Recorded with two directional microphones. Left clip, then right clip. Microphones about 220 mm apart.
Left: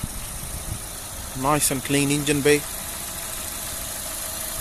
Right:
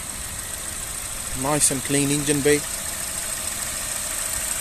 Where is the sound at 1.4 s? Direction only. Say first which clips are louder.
Left 1 dB; centre (ahead or behind).